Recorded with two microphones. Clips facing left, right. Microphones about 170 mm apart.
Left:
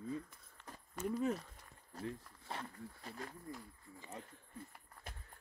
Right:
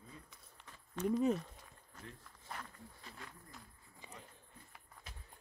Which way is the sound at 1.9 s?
35° left (ahead or behind).